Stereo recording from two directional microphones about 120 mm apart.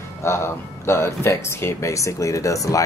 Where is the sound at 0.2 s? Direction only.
20° left (ahead or behind).